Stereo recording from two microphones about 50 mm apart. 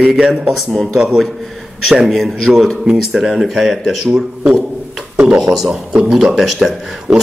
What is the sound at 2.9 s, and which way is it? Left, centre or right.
Speech, centre.